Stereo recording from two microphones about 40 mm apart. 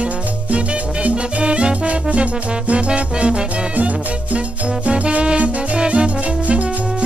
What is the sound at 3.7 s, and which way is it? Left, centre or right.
Music, right.